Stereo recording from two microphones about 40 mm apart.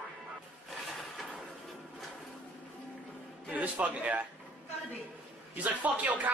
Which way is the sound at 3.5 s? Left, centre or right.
Right.